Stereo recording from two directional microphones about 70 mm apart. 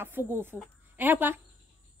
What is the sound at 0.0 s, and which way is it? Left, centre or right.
A woman's voice, right.